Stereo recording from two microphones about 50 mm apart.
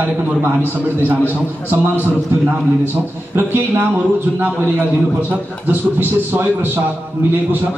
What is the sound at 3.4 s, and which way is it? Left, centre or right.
Speech, right.